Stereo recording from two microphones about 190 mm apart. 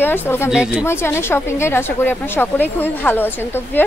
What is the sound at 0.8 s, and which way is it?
Speech, 15° left (ahead or behind).